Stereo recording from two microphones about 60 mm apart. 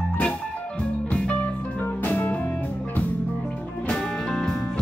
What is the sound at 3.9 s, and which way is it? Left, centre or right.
Music, centre.